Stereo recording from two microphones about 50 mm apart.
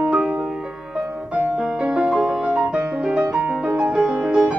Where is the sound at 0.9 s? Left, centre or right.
Centre.